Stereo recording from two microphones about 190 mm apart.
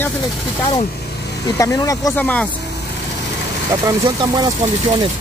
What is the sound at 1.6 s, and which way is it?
Speech, 15° left (ahead or behind).